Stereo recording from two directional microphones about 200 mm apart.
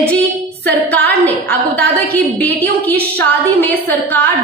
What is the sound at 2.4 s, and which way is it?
A woman's voice, 10° left (ahead or behind).